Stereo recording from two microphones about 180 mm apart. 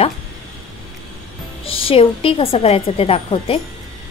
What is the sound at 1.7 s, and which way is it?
A woman's voice, 30° left (ahead or behind).